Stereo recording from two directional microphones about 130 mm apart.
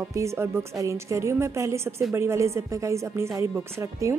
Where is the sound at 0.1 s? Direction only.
20° right (ahead or behind).